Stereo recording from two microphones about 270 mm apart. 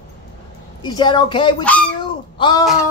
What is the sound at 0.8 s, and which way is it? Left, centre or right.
Speech, centre.